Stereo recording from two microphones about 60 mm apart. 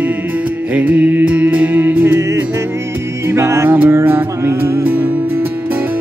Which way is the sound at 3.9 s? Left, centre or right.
Right.